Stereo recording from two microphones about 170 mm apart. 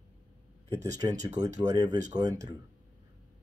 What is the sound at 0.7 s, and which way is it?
Speech, 20° right (ahead or behind).